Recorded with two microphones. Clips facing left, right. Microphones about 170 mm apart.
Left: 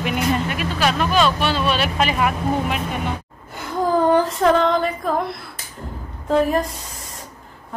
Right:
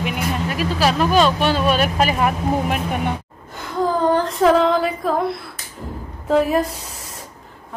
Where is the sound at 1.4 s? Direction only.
45° right (ahead or behind).